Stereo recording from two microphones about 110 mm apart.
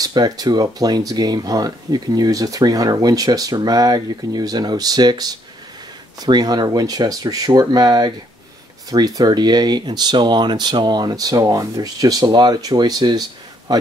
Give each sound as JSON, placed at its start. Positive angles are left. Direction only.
{"t": 0.0, "sound": "a man's voice", "side_deg": -35}